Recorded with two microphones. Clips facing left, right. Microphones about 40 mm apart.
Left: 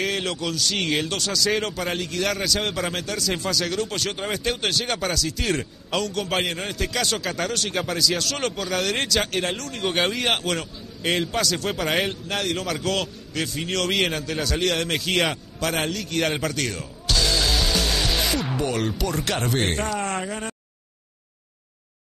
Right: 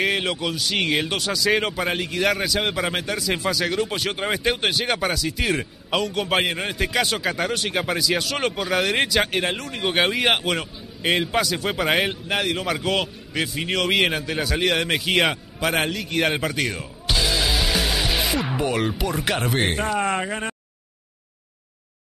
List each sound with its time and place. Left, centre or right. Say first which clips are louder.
0.0 s a man's voice: right 3 dB; centre
20.0 s speech: right 4 dB; right